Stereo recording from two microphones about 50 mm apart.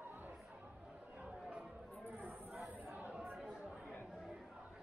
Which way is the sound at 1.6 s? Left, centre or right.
Centre.